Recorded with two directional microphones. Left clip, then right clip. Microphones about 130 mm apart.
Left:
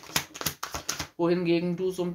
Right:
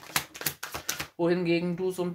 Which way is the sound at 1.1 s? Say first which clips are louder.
Left 1 dB; 35° right (ahead or behind).